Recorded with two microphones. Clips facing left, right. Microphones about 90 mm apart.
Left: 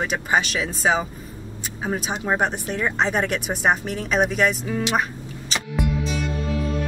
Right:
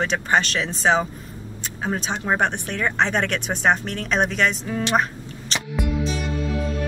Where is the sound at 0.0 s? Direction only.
5° left (ahead or behind).